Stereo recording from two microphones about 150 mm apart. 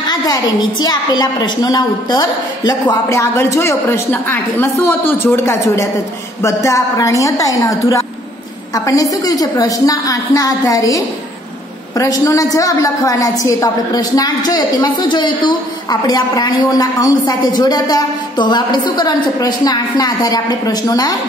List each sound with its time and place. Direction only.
0.1 s a woman's voice: 25° left (ahead or behind)
12.0 s a woman's voice: 20° left (ahead or behind)